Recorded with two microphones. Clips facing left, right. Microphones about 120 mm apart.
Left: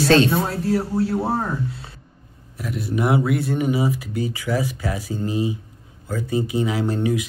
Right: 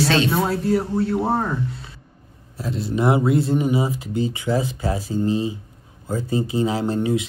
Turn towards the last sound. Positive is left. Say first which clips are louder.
# right 1 dB
turn(degrees=-25)  # may be behind; listen again after turning